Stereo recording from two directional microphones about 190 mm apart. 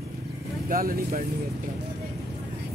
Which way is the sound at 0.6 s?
50° right (ahead or behind).